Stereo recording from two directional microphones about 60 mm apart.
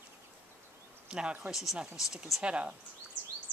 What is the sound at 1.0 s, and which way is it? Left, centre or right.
Speech, centre.